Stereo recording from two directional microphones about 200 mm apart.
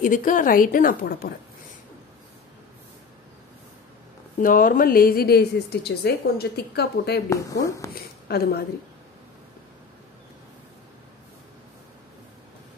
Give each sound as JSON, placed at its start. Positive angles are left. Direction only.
{"t": 0.0, "sound": "a woman's voice", "side_deg": 40}
{"t": 4.4, "sound": "a woman's voice", "side_deg": 45}
{"t": 7.2, "sound": "speech", "side_deg": 15}
{"t": 7.9, "sound": "a woman's voice", "side_deg": 50}